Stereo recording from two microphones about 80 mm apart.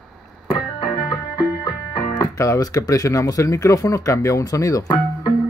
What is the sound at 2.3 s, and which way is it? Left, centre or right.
Speech, left.